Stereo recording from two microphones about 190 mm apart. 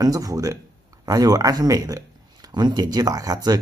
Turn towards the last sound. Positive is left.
turn(degrees=-20)  # may be behind; listen again after turning